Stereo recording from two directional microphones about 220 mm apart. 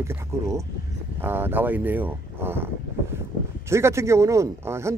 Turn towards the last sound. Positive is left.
turn(degrees=-10)  # may be behind; listen again after turning